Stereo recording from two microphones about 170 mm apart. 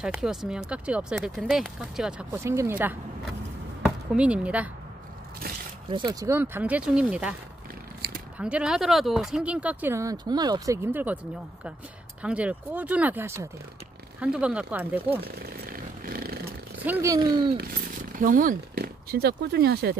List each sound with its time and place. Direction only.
0.0 s speech: 5° right (ahead or behind)
2.4 s speech: 15° right (ahead or behind)
3.8 s speech: 5° right (ahead or behind)
5.9 s speech: 25° right (ahead or behind); by 7.3 s 5° right (ahead or behind)
8.0 s scissors: 65° right (ahead or behind)
8.4 s speech: 5° right (ahead or behind)
12.2 s speech: 5° right (ahead or behind)
15.4 s wild animals: 60° right (ahead or behind)
16.8 s speech: 15° right (ahead or behind)
17.6 s speech: 55° right (ahead or behind)